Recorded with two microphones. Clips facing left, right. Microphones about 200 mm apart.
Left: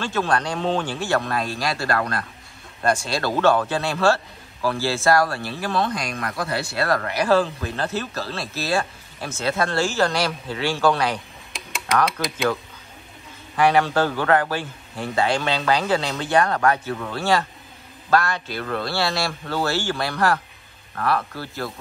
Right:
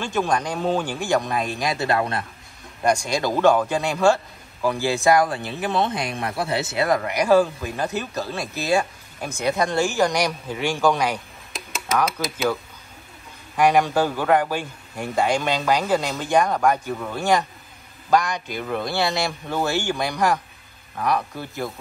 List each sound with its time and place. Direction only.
0.0 s speech: 15° right (ahead or behind)
11.5 s a sound: centre (ahead or behind)
13.6 s speech: 15° right (ahead or behind)